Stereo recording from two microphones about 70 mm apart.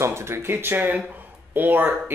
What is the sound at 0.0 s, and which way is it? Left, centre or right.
Speech, right.